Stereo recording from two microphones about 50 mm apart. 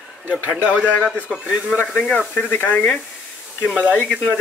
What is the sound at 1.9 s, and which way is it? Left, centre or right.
Speech, left.